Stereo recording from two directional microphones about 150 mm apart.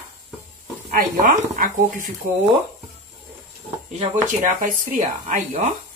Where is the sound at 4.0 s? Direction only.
55° right (ahead or behind).